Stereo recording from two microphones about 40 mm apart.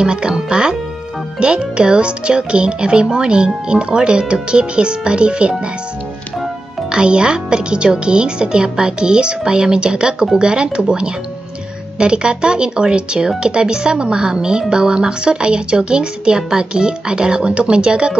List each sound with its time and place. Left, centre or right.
0.0 s speech: right
6.9 s speech: right